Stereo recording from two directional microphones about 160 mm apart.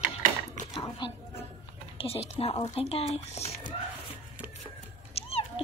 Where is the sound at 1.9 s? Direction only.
40° left (ahead or behind).